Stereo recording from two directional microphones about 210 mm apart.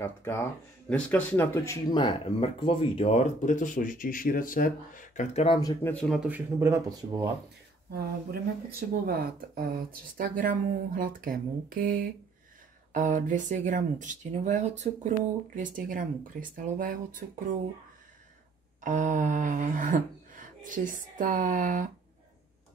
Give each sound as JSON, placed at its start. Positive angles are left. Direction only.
{"t": 0.0, "sound": "speech", "side_deg": 10}
{"t": 5.6, "sound": "speech", "side_deg": 15}
{"t": 5.9, "sound": "speech", "side_deg": 0}
{"t": 7.9, "sound": "speech", "side_deg": -45}
{"t": 18.8, "sound": "speech", "side_deg": -35}